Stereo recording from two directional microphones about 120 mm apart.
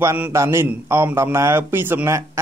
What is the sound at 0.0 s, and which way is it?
A man's voice, 20° right (ahead or behind).